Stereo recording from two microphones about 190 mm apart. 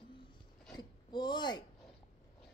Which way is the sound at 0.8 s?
20° left (ahead or behind).